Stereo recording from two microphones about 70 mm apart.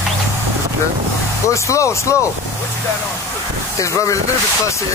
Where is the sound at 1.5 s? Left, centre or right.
Left.